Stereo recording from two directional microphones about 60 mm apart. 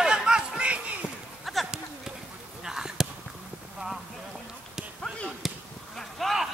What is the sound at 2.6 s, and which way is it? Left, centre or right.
Basketball bounce, centre.